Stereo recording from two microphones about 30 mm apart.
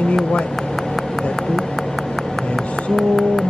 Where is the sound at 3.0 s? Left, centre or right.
Centre.